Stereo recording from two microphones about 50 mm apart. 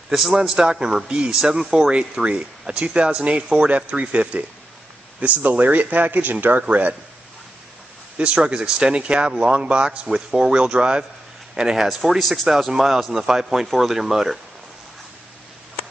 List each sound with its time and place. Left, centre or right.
0.3 s a man's voice: centre; by 7.0 s right
8.4 s a man's voice: centre